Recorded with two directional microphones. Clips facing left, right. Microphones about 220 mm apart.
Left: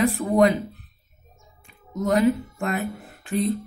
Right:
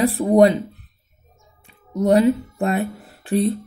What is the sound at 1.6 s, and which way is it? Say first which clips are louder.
A woman's voice: right 6 dB; 35° right (ahead or behind).